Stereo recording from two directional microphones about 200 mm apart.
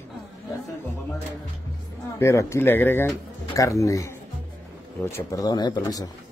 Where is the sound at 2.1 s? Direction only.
15° left (ahead or behind).